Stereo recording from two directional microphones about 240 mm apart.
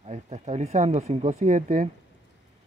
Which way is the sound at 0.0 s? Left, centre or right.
Right.